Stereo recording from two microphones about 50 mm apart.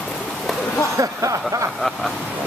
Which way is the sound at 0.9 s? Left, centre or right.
Right.